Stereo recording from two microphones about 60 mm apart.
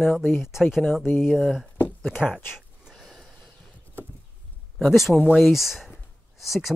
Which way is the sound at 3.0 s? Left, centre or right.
Centre.